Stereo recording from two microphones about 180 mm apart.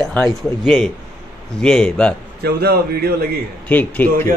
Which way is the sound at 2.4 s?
60° right (ahead or behind).